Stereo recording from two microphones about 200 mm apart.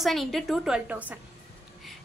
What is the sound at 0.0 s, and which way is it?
A woman's voice, centre (ahead or behind).